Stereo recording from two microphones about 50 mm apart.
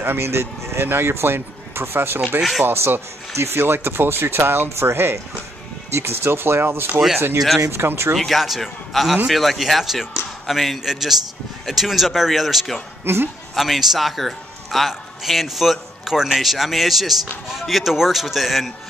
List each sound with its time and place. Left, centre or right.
0.0 s speech: right
8.2 s a man's voice: centre
13.0 s speech: right
13.6 s a man's voice: centre